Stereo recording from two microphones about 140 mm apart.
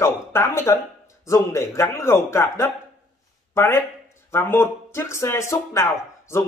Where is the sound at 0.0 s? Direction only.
20° left (ahead or behind).